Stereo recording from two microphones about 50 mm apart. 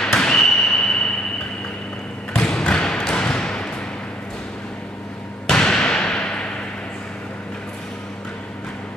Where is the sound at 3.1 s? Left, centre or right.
Centre.